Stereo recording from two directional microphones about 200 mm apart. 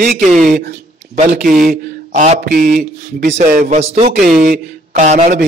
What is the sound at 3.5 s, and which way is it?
A man's voice, 35° right (ahead or behind).